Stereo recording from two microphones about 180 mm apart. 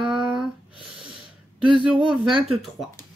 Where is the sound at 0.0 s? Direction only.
Centre (ahead or behind).